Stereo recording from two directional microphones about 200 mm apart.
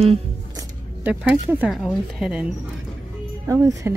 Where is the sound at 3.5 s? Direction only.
15° right (ahead or behind).